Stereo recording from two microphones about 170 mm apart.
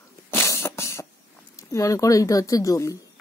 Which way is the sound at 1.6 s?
20° left (ahead or behind).